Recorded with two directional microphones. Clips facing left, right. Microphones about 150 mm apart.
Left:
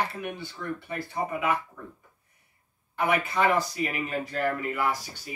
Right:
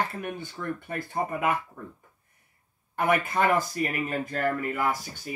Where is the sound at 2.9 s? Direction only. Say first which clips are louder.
Right 1 dB; 50° right (ahead or behind).